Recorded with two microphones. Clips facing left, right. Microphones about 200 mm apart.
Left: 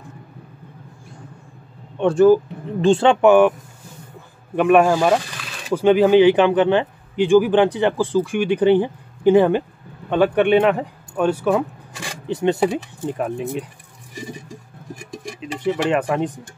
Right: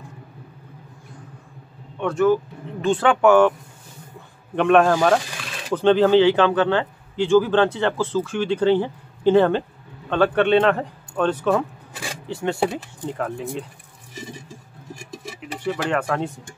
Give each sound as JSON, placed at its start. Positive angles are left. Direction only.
{"t": 2.0, "sound": "speech", "side_deg": 30}
{"t": 4.6, "sound": "speech", "side_deg": 10}
{"t": 15.6, "sound": "speech", "side_deg": 15}